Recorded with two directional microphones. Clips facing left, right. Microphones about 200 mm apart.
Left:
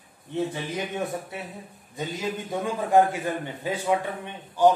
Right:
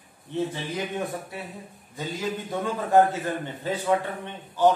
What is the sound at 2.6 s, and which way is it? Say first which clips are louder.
Speech: even; 15° left (ahead or behind).